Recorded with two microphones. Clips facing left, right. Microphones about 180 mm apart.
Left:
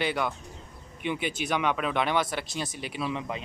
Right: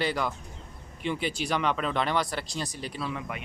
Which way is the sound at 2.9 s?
20° left (ahead or behind).